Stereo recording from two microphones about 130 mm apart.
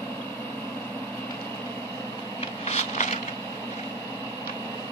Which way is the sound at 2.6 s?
60° left (ahead or behind).